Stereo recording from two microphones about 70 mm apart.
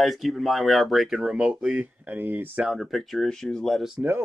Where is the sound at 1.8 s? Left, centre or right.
Right.